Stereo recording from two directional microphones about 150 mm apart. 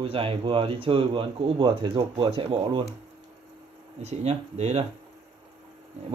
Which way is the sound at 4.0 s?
45° right (ahead or behind).